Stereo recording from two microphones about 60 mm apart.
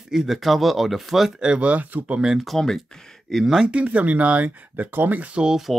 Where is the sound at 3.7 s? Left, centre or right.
Right.